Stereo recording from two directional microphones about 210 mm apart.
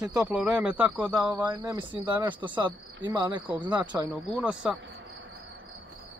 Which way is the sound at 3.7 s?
5° right (ahead or behind).